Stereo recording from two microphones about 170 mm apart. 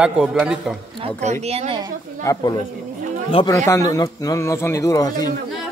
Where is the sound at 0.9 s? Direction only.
35° right (ahead or behind).